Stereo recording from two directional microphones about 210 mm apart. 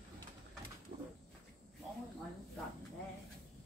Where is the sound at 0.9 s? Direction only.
30° right (ahead or behind).